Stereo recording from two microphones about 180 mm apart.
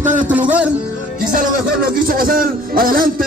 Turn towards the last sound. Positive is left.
turn(degrees=-55)  # may be behind; listen again after turning